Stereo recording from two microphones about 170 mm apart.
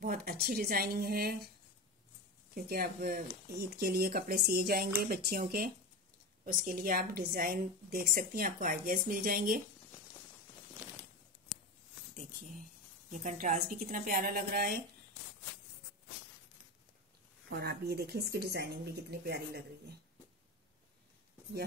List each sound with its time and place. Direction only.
0.0 s a woman's voice: 60° right (ahead or behind)
2.5 s a woman's voice: 60° right (ahead or behind)
13.1 s a woman's voice: 50° right (ahead or behind)
17.5 s speech: 70° right (ahead or behind)